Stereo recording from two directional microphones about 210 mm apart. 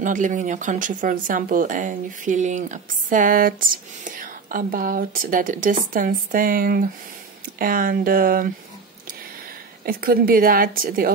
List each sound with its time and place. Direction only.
0.0 s a woman's voice: 40° right (ahead or behind)
9.8 s a woman's voice: 45° right (ahead or behind)